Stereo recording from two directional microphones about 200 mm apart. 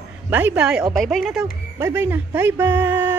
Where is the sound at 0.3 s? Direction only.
10° right (ahead or behind).